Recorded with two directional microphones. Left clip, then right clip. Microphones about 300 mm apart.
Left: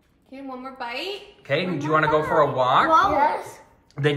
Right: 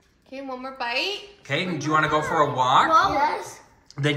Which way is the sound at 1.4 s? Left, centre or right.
Centre.